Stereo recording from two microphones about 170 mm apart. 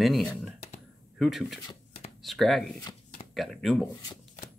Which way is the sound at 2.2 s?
Centre (ahead or behind).